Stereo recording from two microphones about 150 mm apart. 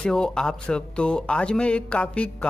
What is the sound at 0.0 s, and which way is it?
Speech, 5° left (ahead or behind).